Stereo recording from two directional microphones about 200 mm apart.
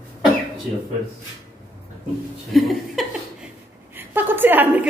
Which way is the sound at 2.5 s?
Centre (ahead or behind).